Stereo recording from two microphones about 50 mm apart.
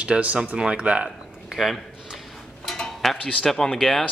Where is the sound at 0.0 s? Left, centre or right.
Right.